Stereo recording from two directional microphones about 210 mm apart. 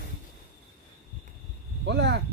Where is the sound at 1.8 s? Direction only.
55° right (ahead or behind).